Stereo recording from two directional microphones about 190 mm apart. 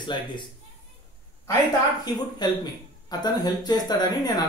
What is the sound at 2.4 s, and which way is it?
Speech, 20° left (ahead or behind).